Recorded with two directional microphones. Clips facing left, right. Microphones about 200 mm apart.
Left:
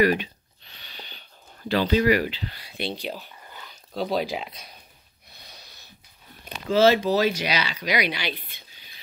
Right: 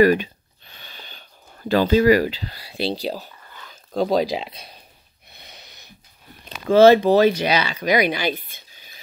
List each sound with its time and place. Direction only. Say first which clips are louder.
0.0 s a sound: right 6 dB; 45° right (ahead or behind)
1.7 s speech: right 5 dB; 45° right (ahead or behind)
5.4 s snort: right 3 dB; 25° right (ahead or behind)
6.7 s speech: right 7 dB; 55° right (ahead or behind)